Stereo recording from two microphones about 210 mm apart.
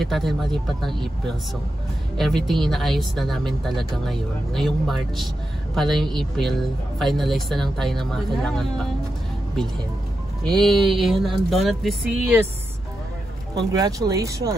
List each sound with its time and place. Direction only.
0.0 s a woman's voice: centre (ahead or behind)
10.4 s a woman's voice: centre (ahead or behind)
13.6 s speech: 20° right (ahead or behind)